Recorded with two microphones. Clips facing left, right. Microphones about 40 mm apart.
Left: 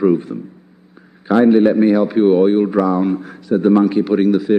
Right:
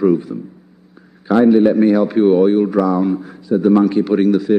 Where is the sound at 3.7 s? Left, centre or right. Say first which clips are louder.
Even; centre.